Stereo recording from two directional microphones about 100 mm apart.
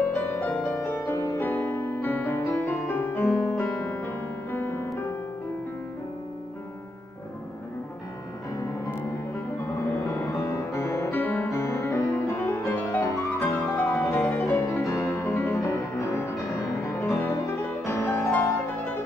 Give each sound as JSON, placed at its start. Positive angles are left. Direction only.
{"t": 0.0, "sound": "music", "side_deg": 15}
{"t": 10.2, "sound": "music", "side_deg": 30}
{"t": 11.5, "sound": "music", "side_deg": 30}
{"t": 13.7, "sound": "music", "side_deg": 15}
{"t": 14.0, "sound": "music", "side_deg": 30}
{"t": 18.2, "sound": "music", "side_deg": 15}